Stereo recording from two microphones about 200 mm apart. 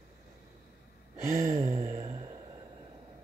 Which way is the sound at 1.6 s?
30° right (ahead or behind).